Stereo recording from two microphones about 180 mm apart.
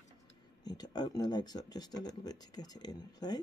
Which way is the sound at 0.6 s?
20° left (ahead or behind).